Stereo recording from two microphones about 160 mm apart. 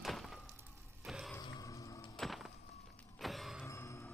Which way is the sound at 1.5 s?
20° left (ahead or behind).